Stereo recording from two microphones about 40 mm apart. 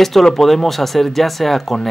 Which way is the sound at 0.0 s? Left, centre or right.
Centre.